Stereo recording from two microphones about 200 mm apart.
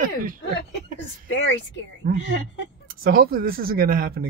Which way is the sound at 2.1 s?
60° left (ahead or behind).